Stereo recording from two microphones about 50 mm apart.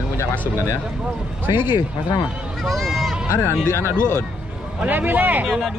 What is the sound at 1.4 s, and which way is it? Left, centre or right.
Speech, right.